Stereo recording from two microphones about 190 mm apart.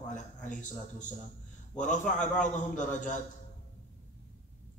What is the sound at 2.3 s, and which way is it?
Speech, 40° left (ahead or behind).